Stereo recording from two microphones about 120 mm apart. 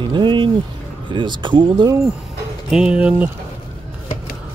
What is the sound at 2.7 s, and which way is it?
Speech, 5° right (ahead or behind).